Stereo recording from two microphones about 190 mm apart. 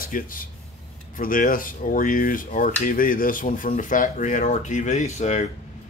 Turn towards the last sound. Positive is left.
turn(degrees=35)  # may be behind; listen again after turning